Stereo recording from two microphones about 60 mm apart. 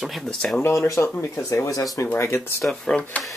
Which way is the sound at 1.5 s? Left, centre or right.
Left.